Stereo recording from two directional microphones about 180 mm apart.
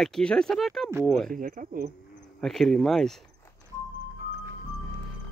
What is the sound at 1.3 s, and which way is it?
Speech, 50° right (ahead or behind).